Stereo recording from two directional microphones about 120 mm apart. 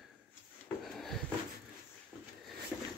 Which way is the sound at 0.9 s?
Centre (ahead or behind).